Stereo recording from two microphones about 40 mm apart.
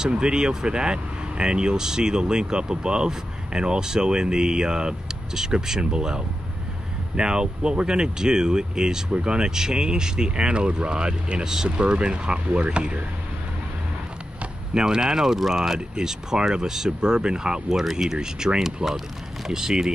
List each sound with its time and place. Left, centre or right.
0.1 s speech: right
11.4 s speech: centre
11.7 s speech: right
14.7 s speech: centre